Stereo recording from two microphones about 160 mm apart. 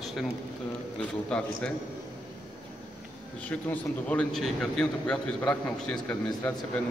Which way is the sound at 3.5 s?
10° left (ahead or behind).